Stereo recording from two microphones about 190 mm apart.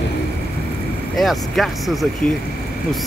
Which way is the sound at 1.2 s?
Centre (ahead or behind).